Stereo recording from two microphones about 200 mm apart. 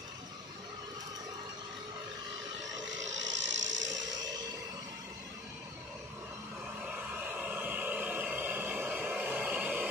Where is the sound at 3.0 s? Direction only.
65° right (ahead or behind).